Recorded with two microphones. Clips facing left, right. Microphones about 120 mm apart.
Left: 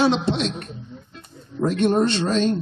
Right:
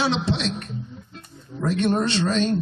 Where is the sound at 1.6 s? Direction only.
45° left (ahead or behind).